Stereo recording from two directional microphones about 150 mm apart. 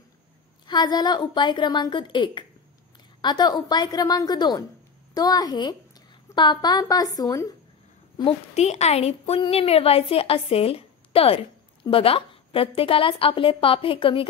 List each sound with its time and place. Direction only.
0.7 s a woman's voice: 30° left (ahead or behind)
8.2 s a woman's voice: 45° left (ahead or behind)